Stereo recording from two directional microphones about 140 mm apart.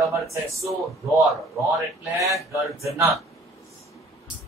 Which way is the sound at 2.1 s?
20° right (ahead or behind).